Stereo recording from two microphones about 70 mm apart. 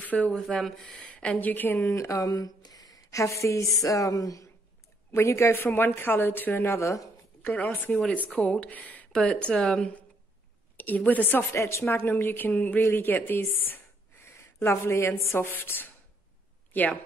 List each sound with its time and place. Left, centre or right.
0.0 s speech: left
0.3 s speech: centre
1.0 s speech: centre
2.0 s a woman's voice: left
3.8 s music: left
5.1 s a woman's voice: left
7.4 s speech: left
9.1 s speech: centre
11.1 s speech: left
11.5 s a woman's voice: left
11.8 s a woman's voice: centre